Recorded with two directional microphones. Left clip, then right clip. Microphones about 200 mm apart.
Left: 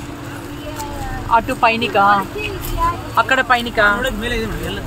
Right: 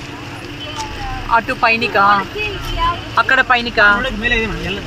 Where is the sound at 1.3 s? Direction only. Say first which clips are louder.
Even; 10° left (ahead or behind).